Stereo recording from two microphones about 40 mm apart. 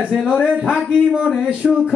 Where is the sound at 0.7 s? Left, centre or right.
Right.